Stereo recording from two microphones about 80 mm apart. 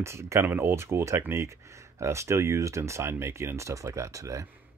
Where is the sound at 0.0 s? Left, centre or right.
Right.